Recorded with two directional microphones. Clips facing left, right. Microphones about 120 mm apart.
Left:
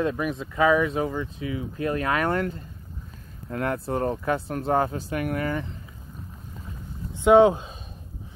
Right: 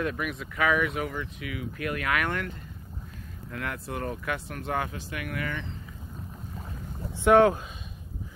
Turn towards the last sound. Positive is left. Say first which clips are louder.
# left 3 dB
turn(degrees=20)  # may be behind; listen again after turning